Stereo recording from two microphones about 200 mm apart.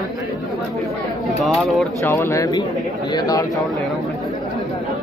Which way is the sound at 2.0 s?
10° left (ahead or behind).